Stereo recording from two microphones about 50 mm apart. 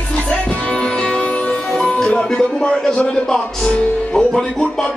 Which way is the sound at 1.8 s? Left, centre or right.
Centre.